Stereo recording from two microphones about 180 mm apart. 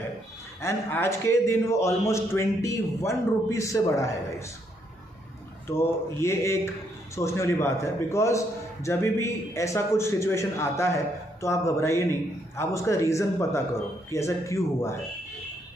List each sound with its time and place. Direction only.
0.6 s a man's voice: 15° left (ahead or behind)
5.7 s a man's voice: 15° left (ahead or behind)